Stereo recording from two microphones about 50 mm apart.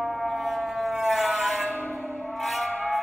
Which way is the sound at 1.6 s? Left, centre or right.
Left.